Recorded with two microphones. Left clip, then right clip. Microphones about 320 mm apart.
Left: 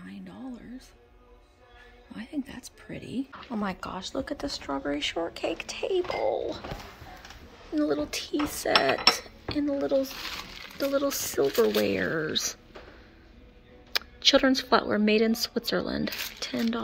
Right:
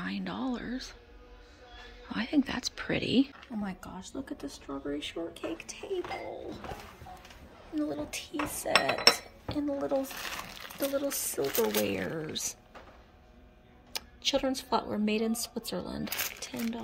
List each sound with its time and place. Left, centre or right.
0.0 s a sound: centre
2.0 s speech: centre
7.7 s speech: centre
11.4 s speech: centre
11.8 s speech: centre
13.9 s speech: centre